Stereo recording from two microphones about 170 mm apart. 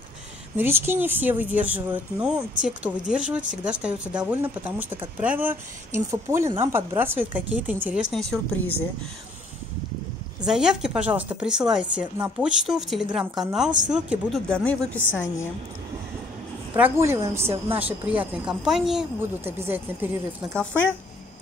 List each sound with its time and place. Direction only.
0.6 s speech: 15° right (ahead or behind); by 8.8 s 10° left (ahead or behind)
10.4 s speech: 5° right (ahead or behind)
14.5 s a woman's voice: 5° left (ahead or behind)
16.7 s speech: 10° right (ahead or behind)